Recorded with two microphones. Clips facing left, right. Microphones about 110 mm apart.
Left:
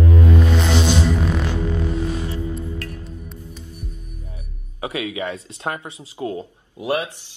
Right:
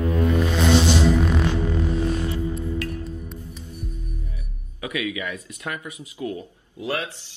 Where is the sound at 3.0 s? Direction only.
Centre (ahead or behind).